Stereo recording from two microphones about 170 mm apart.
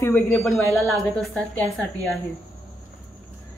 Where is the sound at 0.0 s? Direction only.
10° left (ahead or behind).